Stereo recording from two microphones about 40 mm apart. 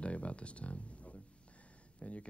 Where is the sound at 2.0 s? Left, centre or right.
Left.